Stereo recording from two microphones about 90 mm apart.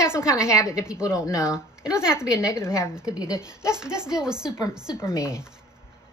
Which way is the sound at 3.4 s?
10° right (ahead or behind).